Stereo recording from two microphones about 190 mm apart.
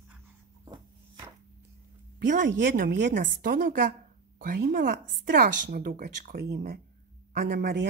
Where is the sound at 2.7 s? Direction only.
55° right (ahead or behind).